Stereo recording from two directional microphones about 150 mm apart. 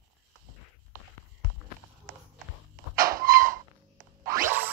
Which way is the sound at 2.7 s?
75° right (ahead or behind).